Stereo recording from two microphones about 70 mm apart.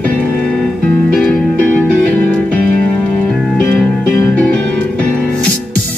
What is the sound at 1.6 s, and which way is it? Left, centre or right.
Music, centre.